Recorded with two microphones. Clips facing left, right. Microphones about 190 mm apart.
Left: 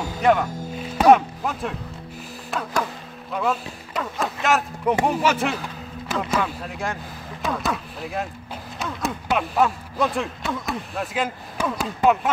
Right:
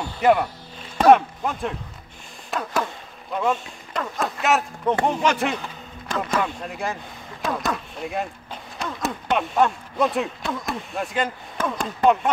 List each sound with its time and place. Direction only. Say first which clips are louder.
0.2 s speech: right 1 dB; 5° right (ahead or behind)
0.5 s music: left 11 dB; 45° left (ahead or behind)
0.9 s speech: even; 5° left (ahead or behind)